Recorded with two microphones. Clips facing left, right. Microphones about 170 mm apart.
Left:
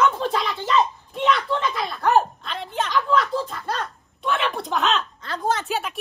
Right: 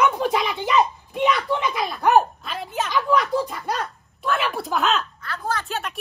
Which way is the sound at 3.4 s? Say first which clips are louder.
Right 2 dB; 10° right (ahead or behind).